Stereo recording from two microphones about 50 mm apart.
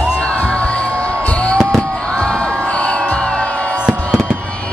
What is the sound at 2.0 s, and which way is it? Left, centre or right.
Music, centre.